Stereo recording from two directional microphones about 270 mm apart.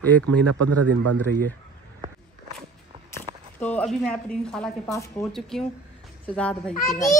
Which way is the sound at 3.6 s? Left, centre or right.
Centre.